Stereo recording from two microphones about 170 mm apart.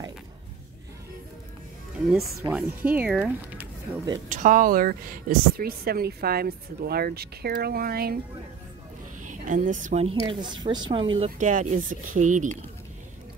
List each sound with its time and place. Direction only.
2.5 s speech: 10° right (ahead or behind)
4.3 s speech: 50° right (ahead or behind)
9.2 s speech: 50° right (ahead or behind)
10.2 s a woman's voice: 25° right (ahead or behind)
11.3 s speech: 45° right (ahead or behind)